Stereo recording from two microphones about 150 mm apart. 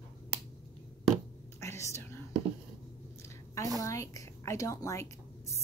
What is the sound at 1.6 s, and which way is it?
Whispering, 20° left (ahead or behind).